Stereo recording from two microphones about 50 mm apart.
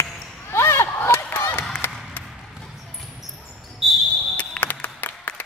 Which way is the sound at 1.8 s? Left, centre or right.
Left.